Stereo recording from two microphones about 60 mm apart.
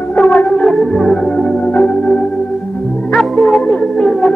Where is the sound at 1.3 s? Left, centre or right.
Left.